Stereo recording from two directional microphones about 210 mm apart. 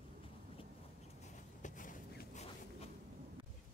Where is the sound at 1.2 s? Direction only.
35° left (ahead or behind).